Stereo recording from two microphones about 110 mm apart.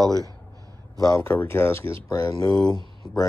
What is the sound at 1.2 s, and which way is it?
Speech, 20° left (ahead or behind).